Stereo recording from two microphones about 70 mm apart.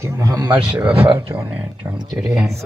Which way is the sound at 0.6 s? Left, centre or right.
Right.